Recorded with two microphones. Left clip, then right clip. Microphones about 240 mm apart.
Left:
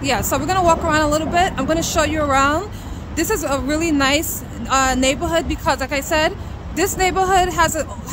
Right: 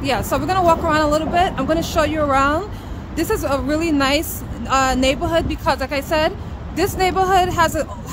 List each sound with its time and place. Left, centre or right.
0.0 s speech: centre